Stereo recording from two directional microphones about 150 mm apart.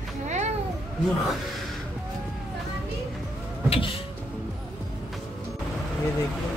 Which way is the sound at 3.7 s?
35° left (ahead or behind).